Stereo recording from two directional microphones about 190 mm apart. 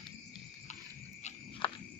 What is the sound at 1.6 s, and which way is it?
Cricket, 25° left (ahead or behind).